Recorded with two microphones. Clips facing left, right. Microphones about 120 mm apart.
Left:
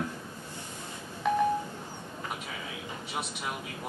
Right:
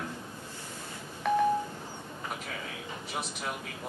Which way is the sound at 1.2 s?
Centre (ahead or behind).